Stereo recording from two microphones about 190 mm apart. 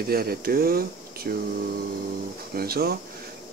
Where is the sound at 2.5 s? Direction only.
55° right (ahead or behind).